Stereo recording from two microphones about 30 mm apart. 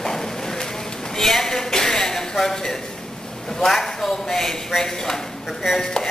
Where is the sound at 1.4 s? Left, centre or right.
Centre.